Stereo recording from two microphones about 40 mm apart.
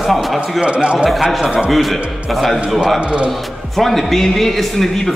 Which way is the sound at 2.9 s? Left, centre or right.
Right.